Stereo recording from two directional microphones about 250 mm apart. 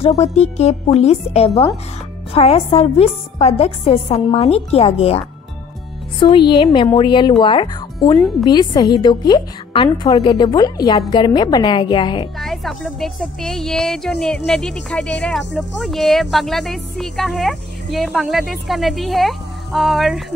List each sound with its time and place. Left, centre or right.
0.0 s a woman's voice: left
12.4 s speech: centre